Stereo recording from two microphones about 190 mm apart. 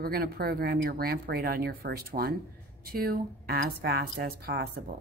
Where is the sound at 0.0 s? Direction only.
55° right (ahead or behind).